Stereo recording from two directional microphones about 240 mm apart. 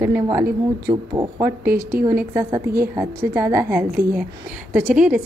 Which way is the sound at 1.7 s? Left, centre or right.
Right.